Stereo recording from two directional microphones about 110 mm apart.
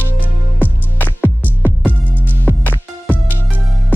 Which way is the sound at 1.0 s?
15° left (ahead or behind).